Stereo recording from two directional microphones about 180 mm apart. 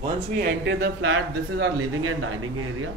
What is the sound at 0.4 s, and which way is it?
Speech, 85° right.